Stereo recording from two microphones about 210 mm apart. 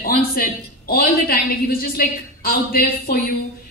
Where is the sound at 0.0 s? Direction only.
45° left (ahead or behind).